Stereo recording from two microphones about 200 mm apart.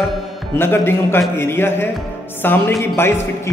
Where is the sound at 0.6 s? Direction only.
10° left (ahead or behind).